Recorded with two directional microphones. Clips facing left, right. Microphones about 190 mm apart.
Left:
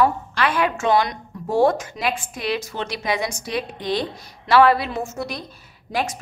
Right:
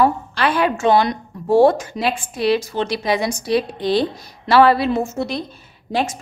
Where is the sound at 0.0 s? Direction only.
30° right (ahead or behind).